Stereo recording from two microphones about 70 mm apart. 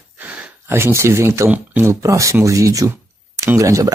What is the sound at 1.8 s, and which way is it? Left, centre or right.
Speech, right.